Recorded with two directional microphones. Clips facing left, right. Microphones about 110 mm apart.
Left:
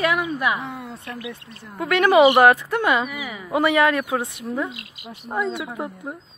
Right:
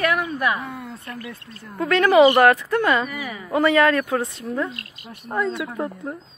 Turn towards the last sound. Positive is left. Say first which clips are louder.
# right 2 dB
turn(degrees=15)  # may be behind; listen again after turning